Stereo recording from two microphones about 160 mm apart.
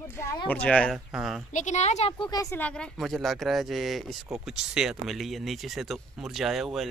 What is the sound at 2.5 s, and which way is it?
Speech, 10° left (ahead or behind).